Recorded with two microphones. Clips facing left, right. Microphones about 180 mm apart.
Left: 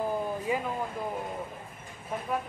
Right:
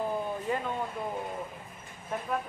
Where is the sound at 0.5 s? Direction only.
10° left (ahead or behind).